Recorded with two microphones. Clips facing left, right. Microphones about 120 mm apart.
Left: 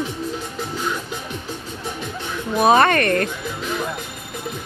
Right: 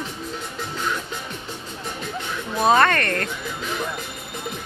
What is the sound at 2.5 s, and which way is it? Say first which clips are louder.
Speech: left 3 dB; 15° left (ahead or behind).